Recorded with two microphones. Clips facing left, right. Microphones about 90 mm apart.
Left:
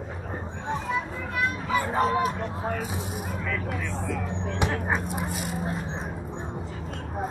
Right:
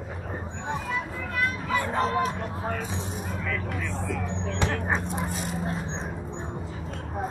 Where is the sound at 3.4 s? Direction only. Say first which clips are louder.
Even; centre (ahead or behind).